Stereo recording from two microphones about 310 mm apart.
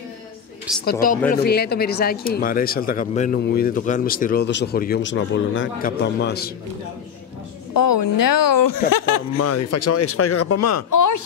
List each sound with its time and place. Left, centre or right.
0.7 s speech: centre
1.3 s speech: left
7.7 s speech: left
9.4 s speech: left